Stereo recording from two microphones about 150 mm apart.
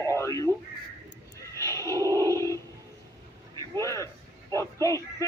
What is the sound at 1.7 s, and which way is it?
Dog, 20° left (ahead or behind).